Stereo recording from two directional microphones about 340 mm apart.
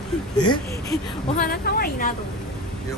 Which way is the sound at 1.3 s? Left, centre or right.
Left.